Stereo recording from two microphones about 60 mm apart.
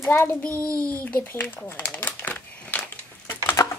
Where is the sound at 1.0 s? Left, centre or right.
Left.